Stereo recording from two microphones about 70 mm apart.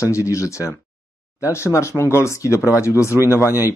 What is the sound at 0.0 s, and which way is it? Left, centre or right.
Speech, left.